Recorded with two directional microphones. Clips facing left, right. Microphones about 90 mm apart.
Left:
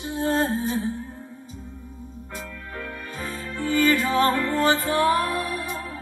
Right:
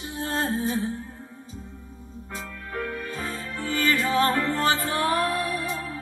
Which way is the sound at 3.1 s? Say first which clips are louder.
Even; 25° left (ahead or behind).